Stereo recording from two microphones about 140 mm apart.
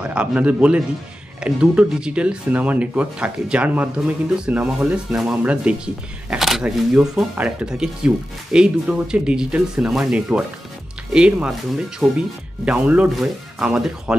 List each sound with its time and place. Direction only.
0.0 s speech: 10° right (ahead or behind)